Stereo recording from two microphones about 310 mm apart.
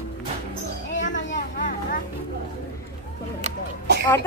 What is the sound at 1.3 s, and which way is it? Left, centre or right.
Vehicle, left.